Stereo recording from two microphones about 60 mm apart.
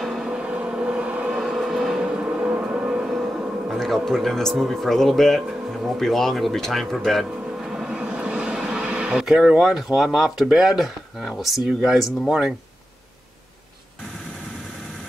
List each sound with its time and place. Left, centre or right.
0.0 s a sound: centre
0.3 s vehicle: centre
1.4 s music: centre
3.6 s speech: centre
7.5 s a sound: centre
9.6 s speech: centre